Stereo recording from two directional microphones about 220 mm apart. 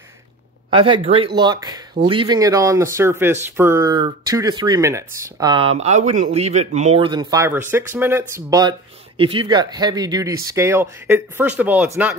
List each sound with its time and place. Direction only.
0.7 s speech: 25° right (ahead or behind); by 12.1 s 5° right (ahead or behind)